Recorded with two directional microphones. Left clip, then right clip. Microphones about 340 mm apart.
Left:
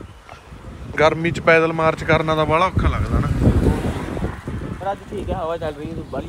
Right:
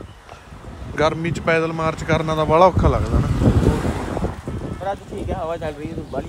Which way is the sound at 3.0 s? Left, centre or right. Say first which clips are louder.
Right 1 dB; centre.